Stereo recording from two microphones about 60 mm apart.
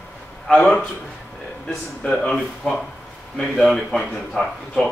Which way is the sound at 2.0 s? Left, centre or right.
Centre.